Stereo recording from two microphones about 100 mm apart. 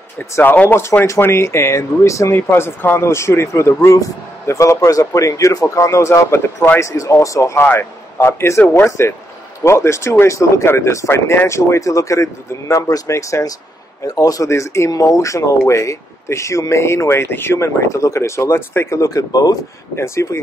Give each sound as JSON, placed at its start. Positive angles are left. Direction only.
{"t": 0.4, "sound": "speech", "side_deg": 20}